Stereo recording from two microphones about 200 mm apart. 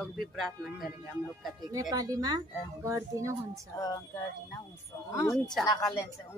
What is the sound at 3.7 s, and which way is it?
Speech, 15° left (ahead or behind).